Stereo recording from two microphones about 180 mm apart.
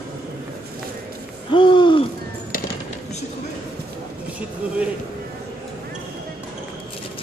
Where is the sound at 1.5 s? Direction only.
25° left (ahead or behind).